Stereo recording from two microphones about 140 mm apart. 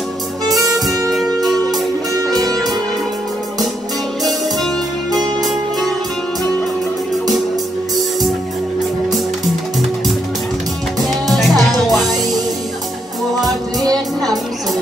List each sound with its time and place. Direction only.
0.5 s music: 25° right (ahead or behind)
1.1 s music: centre (ahead or behind)
4.2 s music: centre (ahead or behind)
11.0 s music: centre (ahead or behind)
13.4 s music: centre (ahead or behind)